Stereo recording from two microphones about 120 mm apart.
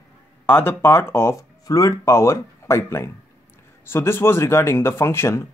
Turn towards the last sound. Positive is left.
turn(degrees=20)  # may be behind; listen again after turning